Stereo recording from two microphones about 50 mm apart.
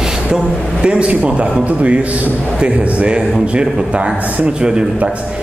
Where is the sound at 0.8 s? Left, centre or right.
Right.